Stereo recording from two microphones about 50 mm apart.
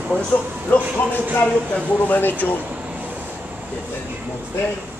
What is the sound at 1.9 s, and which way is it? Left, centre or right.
Speech, left.